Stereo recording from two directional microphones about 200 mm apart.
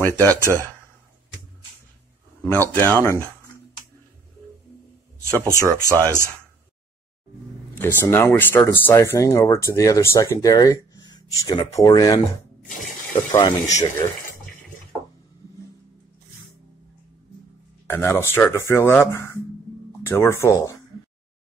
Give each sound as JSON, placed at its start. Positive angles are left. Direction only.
{"t": 0.0, "sound": "speech", "side_deg": 10}
{"t": 2.4, "sound": "speech", "side_deg": 10}
{"t": 5.3, "sound": "speech", "side_deg": -15}
{"t": 7.7, "sound": "speech", "side_deg": 10}
{"t": 17.8, "sound": "speech", "side_deg": 10}